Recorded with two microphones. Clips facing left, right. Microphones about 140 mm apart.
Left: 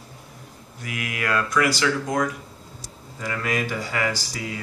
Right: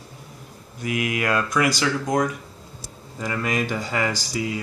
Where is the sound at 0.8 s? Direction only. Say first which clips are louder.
Right 4 dB; 20° right (ahead or behind).